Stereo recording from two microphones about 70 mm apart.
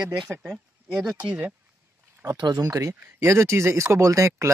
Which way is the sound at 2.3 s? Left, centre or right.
Right.